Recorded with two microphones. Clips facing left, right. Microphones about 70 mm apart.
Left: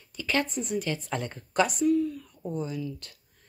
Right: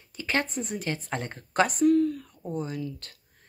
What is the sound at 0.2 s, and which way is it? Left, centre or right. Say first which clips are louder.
Speech: even; right.